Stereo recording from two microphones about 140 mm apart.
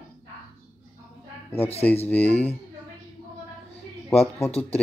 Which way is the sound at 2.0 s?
10° left (ahead or behind).